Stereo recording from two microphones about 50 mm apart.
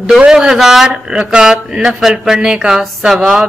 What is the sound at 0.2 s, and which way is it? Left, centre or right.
Speech, centre.